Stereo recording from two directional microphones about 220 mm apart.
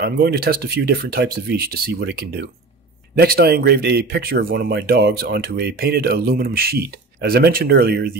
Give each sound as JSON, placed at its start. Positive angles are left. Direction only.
{"t": 0.0, "sound": "speech", "side_deg": -45}